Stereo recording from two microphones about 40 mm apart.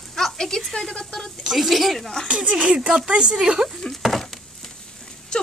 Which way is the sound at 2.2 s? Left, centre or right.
Right.